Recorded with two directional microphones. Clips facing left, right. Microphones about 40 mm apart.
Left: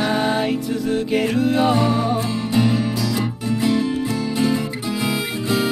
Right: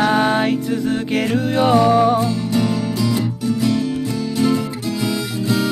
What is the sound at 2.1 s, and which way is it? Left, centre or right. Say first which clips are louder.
Music: right 2 dB; left.